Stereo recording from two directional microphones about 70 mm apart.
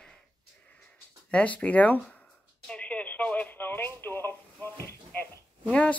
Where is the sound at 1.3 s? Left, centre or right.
Centre.